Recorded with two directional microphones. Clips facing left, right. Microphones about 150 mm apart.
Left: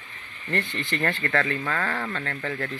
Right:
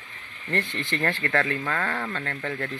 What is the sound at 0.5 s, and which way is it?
Speech, centre (ahead or behind).